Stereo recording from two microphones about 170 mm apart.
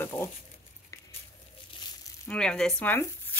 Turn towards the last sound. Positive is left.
turn(degrees=10)  # may be behind; listen again after turning